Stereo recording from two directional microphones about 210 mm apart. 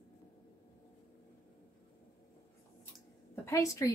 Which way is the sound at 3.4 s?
15° left (ahead or behind).